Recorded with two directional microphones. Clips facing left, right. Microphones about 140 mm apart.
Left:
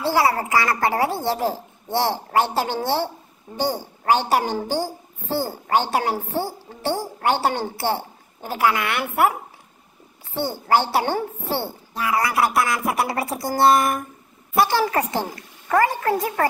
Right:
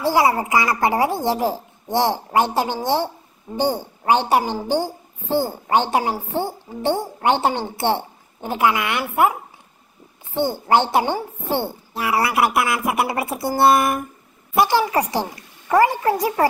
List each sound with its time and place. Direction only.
0.0 s a woman's voice: 15° right (ahead or behind)
10.3 s a woman's voice: 15° right (ahead or behind)
11.9 s a woman's voice: 30° right (ahead or behind)